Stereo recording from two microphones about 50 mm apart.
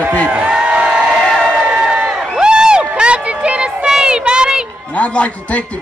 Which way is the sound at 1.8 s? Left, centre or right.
Centre.